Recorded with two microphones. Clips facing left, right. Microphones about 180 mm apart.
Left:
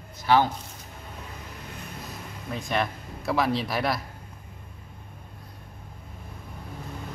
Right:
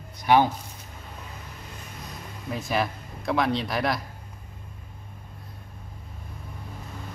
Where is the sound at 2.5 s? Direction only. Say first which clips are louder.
Right 1 dB; 5° right (ahead or behind).